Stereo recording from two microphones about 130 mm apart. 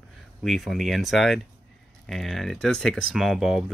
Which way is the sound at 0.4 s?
Centre (ahead or behind).